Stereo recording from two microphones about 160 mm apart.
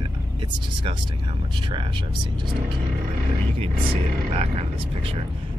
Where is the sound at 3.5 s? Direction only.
40° right (ahead or behind).